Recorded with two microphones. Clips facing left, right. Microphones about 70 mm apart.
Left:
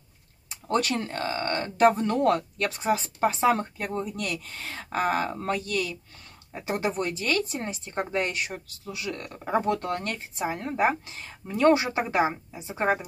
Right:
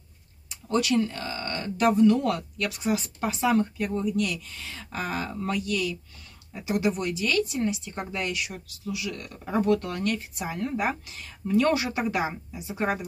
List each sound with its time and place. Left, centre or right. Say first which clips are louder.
0.5 s speech: right 1 dB; left